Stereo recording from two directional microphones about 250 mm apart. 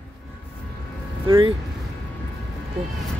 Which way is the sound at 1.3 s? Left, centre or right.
Right.